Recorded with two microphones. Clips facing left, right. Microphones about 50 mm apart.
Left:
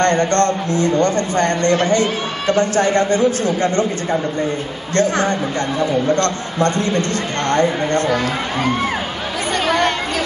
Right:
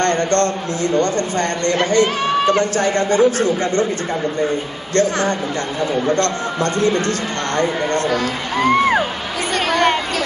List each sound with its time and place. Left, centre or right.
0.0 s a man's voice: left
2.0 s a man's voice: right
2.6 s a man's voice: left